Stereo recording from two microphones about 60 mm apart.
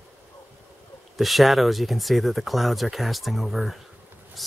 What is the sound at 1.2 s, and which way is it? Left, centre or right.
Speech, centre.